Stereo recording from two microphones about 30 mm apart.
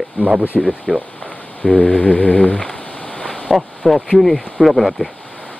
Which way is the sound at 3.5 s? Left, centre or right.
Centre.